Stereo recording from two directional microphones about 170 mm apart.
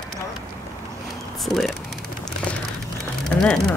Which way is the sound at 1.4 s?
Centre (ahead or behind).